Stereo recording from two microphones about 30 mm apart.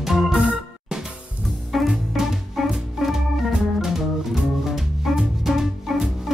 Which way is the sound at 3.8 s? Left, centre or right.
Centre.